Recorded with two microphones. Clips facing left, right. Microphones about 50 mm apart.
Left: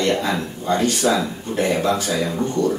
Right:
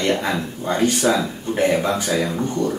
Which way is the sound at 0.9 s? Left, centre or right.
Centre.